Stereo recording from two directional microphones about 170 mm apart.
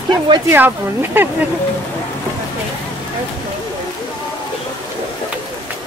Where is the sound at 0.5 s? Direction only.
10° right (ahead or behind).